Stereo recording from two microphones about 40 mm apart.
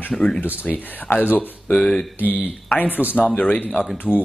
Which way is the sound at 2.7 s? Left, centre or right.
Left.